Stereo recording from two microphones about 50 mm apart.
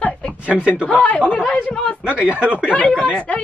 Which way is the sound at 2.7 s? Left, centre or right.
Left.